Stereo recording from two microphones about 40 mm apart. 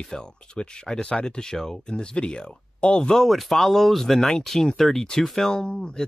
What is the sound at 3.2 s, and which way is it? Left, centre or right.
Speech, centre.